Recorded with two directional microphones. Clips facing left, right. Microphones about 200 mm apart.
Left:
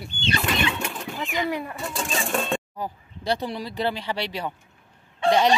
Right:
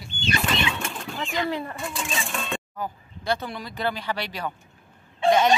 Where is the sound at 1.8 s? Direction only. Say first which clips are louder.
Left 2 dB; 40° left (ahead or behind).